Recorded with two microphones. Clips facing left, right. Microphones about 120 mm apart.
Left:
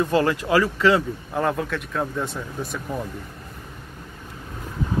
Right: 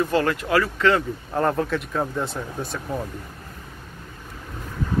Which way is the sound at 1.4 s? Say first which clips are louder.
Right 2 dB; centre (ahead or behind).